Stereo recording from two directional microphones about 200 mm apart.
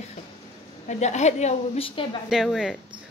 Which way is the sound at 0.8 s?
35° left (ahead or behind).